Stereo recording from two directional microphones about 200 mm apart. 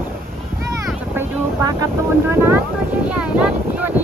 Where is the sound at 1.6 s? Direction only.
15° right (ahead or behind).